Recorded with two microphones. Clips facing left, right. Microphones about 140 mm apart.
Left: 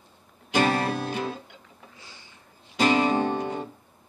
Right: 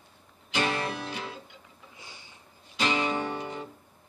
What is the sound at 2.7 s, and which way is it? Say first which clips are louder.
Music: left 7 dB; 45° left (ahead or behind).